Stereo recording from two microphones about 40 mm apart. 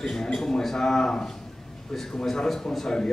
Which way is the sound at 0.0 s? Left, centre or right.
Centre.